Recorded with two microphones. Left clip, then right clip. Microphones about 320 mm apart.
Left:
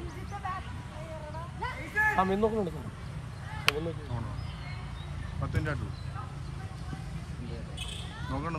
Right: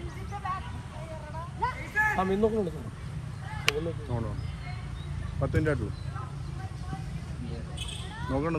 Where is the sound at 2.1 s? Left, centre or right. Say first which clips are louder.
Right 1 dB; centre.